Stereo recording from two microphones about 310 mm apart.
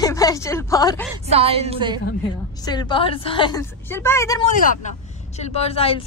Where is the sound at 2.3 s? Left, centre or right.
Centre.